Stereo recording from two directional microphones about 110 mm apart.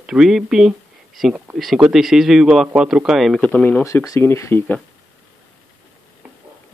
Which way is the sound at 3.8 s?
30° left (ahead or behind).